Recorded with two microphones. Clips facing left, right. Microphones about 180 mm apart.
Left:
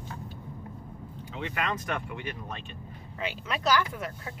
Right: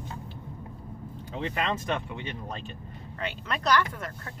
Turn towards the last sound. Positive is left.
turn(degrees=5)  # may be behind; listen again after turning